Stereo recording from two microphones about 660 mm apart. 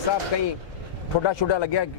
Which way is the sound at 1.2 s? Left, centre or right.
Left.